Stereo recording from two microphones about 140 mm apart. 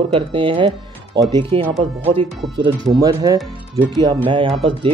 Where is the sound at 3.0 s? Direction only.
25° right (ahead or behind).